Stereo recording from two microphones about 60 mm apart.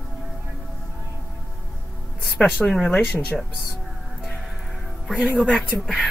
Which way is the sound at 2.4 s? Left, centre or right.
Left.